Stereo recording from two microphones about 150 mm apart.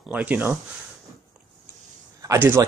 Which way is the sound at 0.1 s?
10° right (ahead or behind).